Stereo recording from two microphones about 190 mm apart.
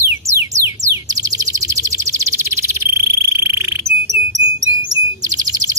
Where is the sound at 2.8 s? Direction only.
15° right (ahead or behind).